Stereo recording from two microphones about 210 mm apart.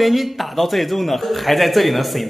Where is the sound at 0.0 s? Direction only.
Centre (ahead or behind).